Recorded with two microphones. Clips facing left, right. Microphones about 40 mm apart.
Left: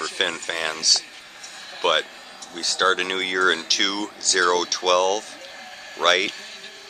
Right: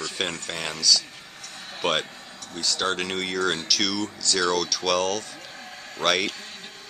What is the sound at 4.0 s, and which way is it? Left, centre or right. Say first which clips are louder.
Speech: left 4 dB; centre.